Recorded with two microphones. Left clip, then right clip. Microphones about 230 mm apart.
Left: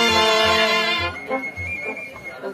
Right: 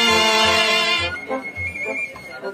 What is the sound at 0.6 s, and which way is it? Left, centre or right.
Music, right.